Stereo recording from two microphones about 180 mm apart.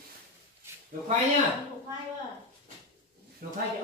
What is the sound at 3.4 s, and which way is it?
Speech, 55° right (ahead or behind).